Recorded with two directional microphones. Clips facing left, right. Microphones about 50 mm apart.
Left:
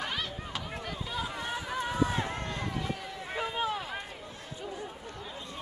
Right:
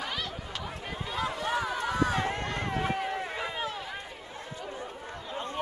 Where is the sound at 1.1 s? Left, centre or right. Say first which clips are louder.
Right 6 dB; right.